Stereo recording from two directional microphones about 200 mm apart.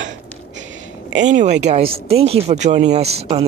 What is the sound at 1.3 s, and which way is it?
Speech, 35° right (ahead or behind).